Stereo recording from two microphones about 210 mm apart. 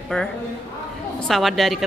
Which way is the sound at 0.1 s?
5° left (ahead or behind).